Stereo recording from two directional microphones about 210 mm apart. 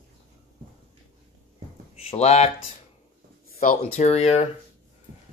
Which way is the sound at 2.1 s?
30° left (ahead or behind).